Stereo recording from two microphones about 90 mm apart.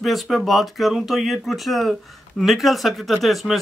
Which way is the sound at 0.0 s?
Centre (ahead or behind).